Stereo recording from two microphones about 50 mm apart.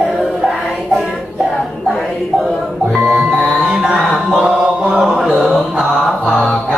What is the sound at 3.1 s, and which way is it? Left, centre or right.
Music, right.